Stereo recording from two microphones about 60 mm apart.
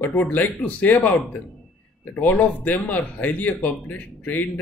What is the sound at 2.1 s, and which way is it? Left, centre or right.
Speech, left.